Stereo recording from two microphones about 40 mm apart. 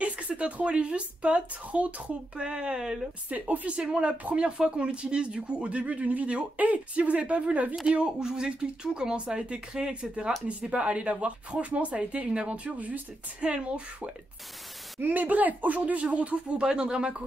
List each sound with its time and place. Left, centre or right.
0.0 s a woman's voice: right
2.4 s speech: right
3.3 s a woman's voice: right
3.7 s a woman's voice: right
8.0 s a woman's voice: centre; by 13.0 s right
13.4 s speech: right
15.0 s a woman's voice: right